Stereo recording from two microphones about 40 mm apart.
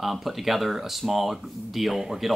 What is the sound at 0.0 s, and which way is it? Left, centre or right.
Speech, centre.